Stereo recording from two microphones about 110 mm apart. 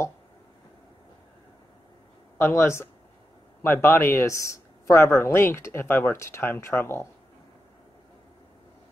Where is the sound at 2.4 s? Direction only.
25° left (ahead or behind).